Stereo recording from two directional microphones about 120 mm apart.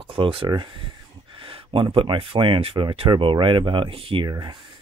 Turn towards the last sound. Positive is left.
turn(degrees=-40)  # may be behind; listen again after turning